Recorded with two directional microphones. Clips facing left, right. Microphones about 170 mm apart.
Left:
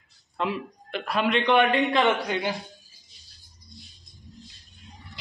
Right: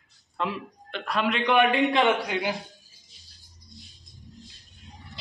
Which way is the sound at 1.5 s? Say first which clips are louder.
Right 1 dB; 10° right (ahead or behind).